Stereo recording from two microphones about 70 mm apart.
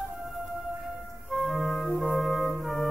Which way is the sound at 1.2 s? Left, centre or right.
Centre.